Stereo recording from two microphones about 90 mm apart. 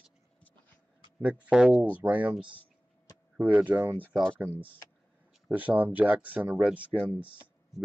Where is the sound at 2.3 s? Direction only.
65° right (ahead or behind).